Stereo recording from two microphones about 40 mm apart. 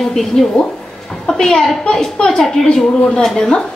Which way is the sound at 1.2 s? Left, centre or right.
Centre.